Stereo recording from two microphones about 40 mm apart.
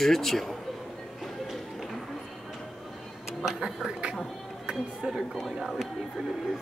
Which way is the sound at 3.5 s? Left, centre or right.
Centre.